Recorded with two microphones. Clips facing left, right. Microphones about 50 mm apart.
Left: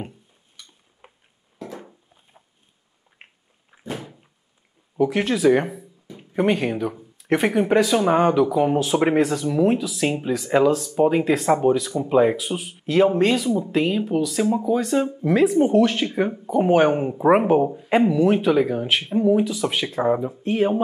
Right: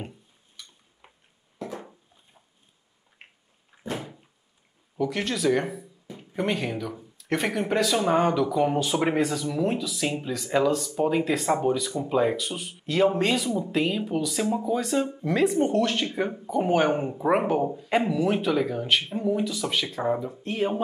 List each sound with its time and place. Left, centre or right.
0.6 s a sound: centre
1.0 s music: centre
3.7 s door: centre
4.9 s speech: centre
11.1 s speech: centre
18.0 s speech: centre